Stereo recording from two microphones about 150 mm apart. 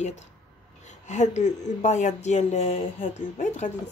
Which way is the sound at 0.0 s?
50° left (ahead or behind).